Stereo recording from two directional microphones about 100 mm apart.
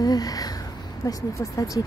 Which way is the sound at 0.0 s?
40° left (ahead or behind).